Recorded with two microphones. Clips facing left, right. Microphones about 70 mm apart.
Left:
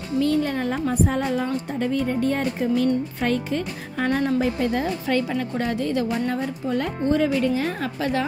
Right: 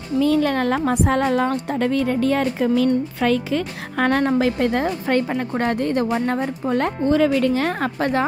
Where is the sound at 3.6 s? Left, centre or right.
Right.